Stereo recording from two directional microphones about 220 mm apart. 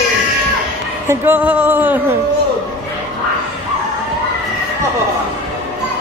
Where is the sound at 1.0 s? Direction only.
10° right (ahead or behind).